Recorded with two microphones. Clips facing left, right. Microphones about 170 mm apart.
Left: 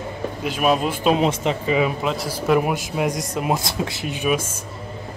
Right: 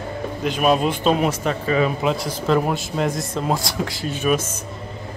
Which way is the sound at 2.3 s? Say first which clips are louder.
Left 4 dB; 10° left (ahead or behind).